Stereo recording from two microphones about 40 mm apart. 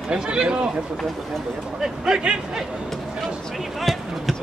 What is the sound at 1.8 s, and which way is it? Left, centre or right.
Speech, centre.